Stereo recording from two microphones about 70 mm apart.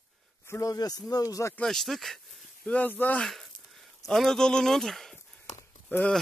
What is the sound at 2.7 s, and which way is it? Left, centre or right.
Speech, left.